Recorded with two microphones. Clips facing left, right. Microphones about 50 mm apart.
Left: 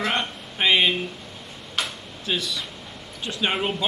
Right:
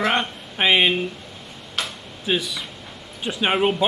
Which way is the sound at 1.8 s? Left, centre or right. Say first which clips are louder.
Even; centre.